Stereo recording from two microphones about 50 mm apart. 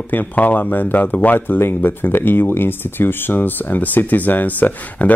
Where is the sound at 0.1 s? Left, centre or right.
Left.